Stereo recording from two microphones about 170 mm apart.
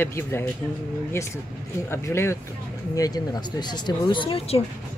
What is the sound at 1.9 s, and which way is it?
Speech, 15° left (ahead or behind).